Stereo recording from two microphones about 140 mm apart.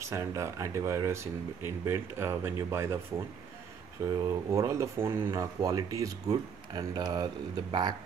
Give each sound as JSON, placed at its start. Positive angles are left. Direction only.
{"t": 0.0, "sound": "speech", "side_deg": -20}
{"t": 4.1, "sound": "speech", "side_deg": -25}